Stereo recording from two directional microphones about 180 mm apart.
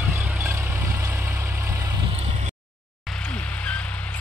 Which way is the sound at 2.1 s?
35° right (ahead or behind).